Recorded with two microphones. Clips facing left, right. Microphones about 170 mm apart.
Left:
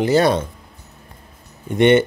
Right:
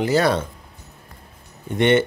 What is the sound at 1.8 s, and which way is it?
Speech, 15° left (ahead or behind).